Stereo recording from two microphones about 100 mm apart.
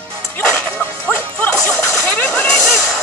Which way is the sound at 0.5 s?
10° left (ahead or behind).